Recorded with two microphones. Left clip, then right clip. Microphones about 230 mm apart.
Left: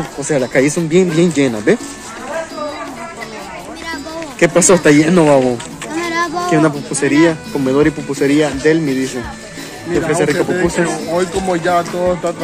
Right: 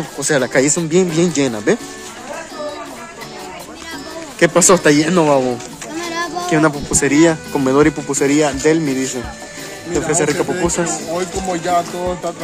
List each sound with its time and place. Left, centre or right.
0.2 s speech: centre
4.4 s speech: centre
6.0 s speech: centre